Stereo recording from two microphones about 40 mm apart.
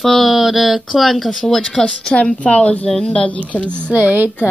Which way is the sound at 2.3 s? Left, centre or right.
Left.